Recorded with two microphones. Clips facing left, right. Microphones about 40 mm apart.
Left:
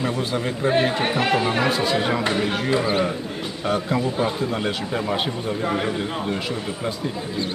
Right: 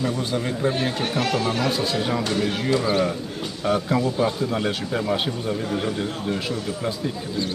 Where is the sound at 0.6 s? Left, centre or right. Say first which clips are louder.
Left 6 dB; left; by 5.6 s centre.